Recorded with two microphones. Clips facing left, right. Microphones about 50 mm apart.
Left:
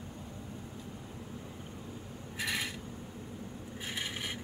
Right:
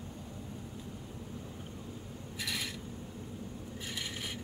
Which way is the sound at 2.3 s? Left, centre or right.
Left.